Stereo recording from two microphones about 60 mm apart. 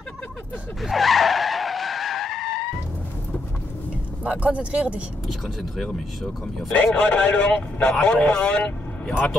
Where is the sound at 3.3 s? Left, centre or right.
Left.